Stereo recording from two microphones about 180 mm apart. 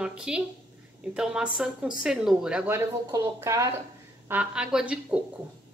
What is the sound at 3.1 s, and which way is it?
A woman's voice, 20° right (ahead or behind).